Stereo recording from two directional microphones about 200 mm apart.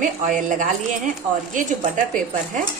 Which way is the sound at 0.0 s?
40° right (ahead or behind).